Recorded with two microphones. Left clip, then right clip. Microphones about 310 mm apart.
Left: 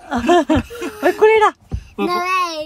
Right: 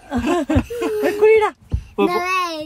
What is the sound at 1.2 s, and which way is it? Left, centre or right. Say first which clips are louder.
Speech: left 2 dB; left.